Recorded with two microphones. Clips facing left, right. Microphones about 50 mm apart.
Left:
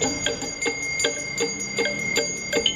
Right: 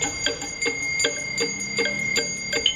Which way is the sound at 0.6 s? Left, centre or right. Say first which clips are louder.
Right 2 dB; centre.